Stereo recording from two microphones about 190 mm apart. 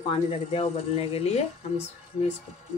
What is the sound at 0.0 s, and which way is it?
Speech, 30° left (ahead or behind).